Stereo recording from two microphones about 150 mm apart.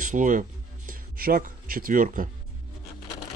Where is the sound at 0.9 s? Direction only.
70° right (ahead or behind).